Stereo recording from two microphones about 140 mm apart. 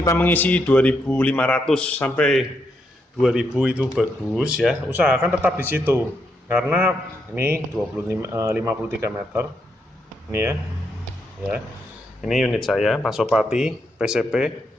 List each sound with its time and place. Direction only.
0.0 s a man's voice: 20° left (ahead or behind)
3.2 s speech: 5° right (ahead or behind)
8.1 s speech: 20° right (ahead or behind)
12.2 s speech: centre (ahead or behind)